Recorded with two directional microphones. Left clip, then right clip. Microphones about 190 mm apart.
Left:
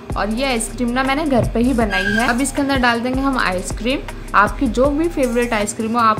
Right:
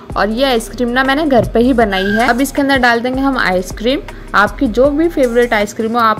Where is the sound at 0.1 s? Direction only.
35° right (ahead or behind).